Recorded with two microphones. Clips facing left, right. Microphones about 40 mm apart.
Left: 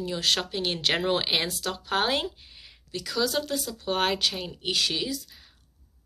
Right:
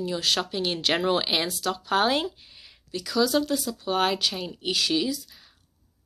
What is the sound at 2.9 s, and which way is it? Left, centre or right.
A woman's voice, left.